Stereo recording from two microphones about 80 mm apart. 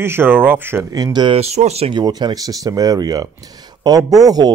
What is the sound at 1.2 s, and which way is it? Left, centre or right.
A man's voice, right.